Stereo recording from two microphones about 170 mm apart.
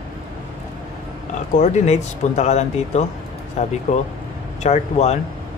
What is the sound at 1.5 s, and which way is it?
A man's voice, 45° left (ahead or behind).